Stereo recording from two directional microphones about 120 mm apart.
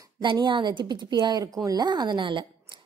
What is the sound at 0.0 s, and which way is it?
A woman's voice, 40° right (ahead or behind).